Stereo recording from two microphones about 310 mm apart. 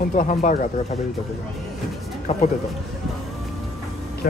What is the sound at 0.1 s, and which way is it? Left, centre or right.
Speech, left.